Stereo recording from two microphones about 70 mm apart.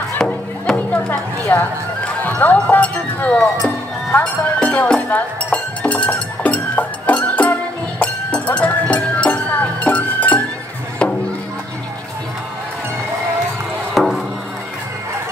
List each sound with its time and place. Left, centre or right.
0.7 s music: left
1.5 s speech: left
4.2 s music: centre
13.9 s chop: centre